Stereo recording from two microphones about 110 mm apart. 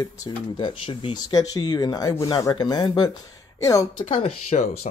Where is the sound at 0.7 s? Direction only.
55° left (ahead or behind).